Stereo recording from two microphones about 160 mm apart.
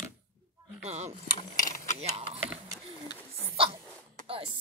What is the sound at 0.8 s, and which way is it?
Chopping, 45° right (ahead or behind).